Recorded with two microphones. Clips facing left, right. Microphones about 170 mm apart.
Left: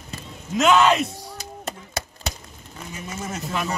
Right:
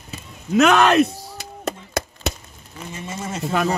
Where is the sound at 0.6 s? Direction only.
75° right (ahead or behind).